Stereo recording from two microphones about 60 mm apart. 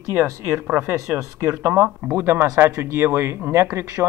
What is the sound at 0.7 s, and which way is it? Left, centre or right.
Speech, right.